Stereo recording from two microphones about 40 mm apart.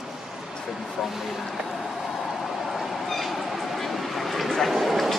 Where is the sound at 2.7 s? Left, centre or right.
Centre.